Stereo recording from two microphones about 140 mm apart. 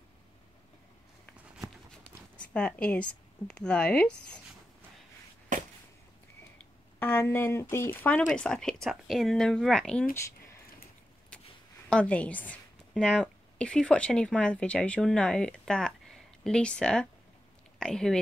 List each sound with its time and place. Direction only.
2.3 s speech: 10° left (ahead or behind)
7.0 s a woman's voice: 15° left (ahead or behind)
11.9 s a woman's voice: 10° left (ahead or behind)